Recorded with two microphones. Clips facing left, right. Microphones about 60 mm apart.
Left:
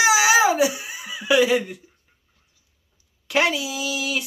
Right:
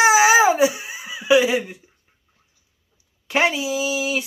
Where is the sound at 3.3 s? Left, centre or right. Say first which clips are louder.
Right 2 dB; right.